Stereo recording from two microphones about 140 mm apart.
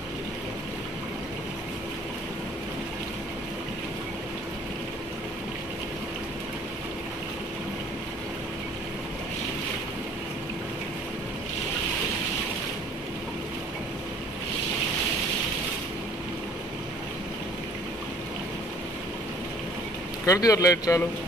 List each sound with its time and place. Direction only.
20.2 s speech: 25° left (ahead or behind)